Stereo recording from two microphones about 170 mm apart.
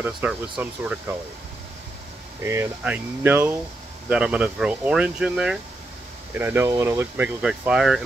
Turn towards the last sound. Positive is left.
turn(degrees=-5)  # may be behind; listen again after turning